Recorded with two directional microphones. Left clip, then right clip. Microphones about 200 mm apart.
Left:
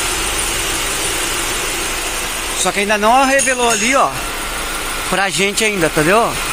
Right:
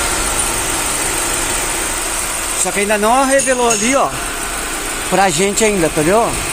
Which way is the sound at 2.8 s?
5° right (ahead or behind).